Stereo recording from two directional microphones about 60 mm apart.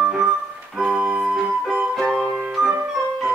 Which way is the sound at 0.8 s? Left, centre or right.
Centre.